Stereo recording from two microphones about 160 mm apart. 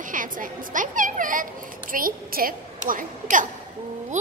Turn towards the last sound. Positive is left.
turn(degrees=-50)  # may be behind; listen again after turning